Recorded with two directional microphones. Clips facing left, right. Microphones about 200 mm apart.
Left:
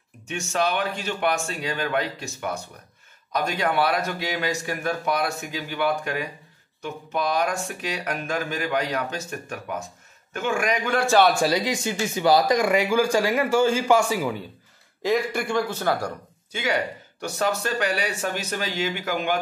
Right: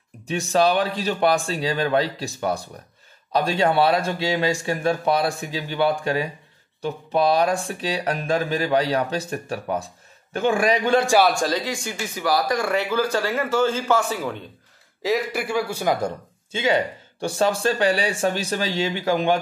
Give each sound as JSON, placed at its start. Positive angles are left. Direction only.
{"t": 0.3, "sound": "a man's voice", "side_deg": -35}
{"t": 11.1, "sound": "a man's voice", "side_deg": -5}
{"t": 11.3, "sound": "speech", "side_deg": 10}
{"t": 15.0, "sound": "a man's voice", "side_deg": 0}
{"t": 16.5, "sound": "speech", "side_deg": -25}